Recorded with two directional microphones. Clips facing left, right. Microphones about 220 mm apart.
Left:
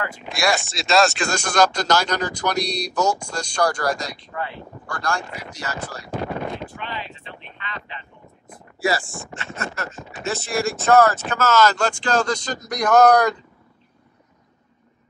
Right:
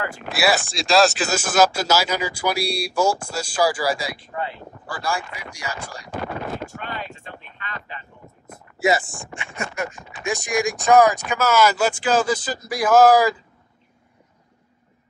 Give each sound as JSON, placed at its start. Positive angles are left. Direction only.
{"t": 0.2, "sound": "speech", "side_deg": -5}
{"t": 6.6, "sound": "wind noise", "side_deg": -45}
{"t": 8.7, "sound": "speech", "side_deg": -20}